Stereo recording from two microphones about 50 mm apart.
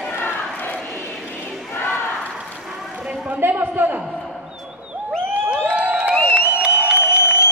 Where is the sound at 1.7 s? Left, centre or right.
Left.